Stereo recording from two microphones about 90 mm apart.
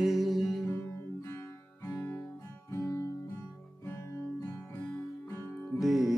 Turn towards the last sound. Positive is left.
turn(degrees=0)  # may be behind; listen again after turning